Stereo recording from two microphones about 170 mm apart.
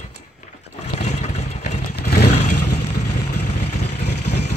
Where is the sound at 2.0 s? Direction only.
75° left (ahead or behind).